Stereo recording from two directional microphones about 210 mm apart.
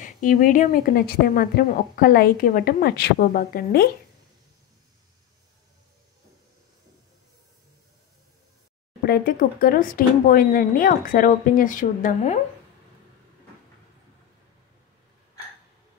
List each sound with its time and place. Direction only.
0.0 s a woman's voice: 40° left (ahead or behind)
9.0 s speech: 45° left (ahead or behind)